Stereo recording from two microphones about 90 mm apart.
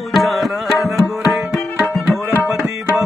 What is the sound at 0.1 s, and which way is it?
Tabla, centre (ahead or behind).